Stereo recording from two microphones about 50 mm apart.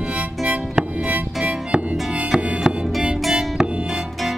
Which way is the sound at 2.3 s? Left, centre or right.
Centre.